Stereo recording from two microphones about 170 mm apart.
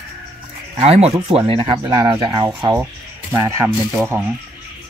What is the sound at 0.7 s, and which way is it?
Speech, 35° right (ahead or behind).